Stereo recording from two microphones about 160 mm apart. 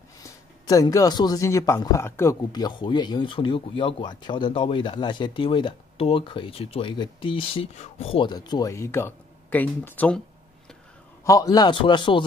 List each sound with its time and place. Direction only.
0.2 s a man's voice: 25° left (ahead or behind)
11.2 s a man's voice: 20° left (ahead or behind)